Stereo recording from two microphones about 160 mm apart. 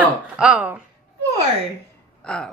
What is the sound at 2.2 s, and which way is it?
Gasp, 5° left (ahead or behind).